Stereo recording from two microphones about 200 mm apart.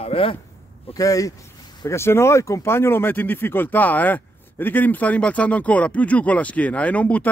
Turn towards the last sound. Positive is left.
turn(degrees=5)  # may be behind; listen again after turning